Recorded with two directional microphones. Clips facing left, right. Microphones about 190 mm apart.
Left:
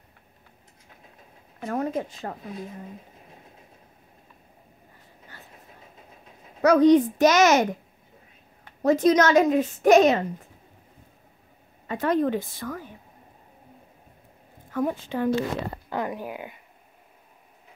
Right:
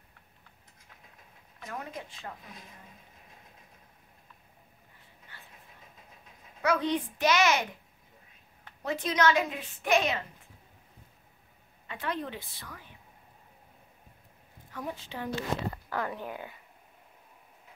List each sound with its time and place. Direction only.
1.7 s a woman's voice: 45° left (ahead or behind)
2.0 s speech: 55° left (ahead or behind)
6.6 s a woman's voice: 40° left (ahead or behind)
8.8 s a woman's voice: 40° left (ahead or behind)
11.9 s a woman's voice: 45° left (ahead or behind)
14.7 s a woman's voice: 50° left (ahead or behind)
15.9 s speech: 15° left (ahead or behind)